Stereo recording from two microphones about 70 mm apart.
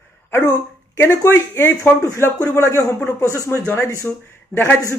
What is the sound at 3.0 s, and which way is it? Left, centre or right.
Speech, left.